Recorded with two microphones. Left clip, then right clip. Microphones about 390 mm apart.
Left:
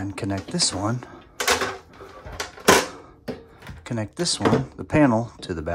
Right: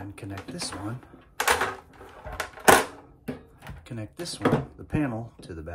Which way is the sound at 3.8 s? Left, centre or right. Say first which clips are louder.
Left 10 dB; centre.